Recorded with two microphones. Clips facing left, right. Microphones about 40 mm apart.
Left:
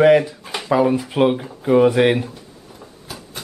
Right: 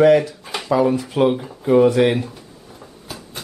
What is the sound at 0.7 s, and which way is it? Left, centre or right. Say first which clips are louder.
Speech: even; centre.